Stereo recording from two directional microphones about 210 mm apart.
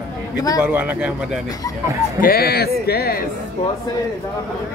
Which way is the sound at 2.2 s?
45° left (ahead or behind).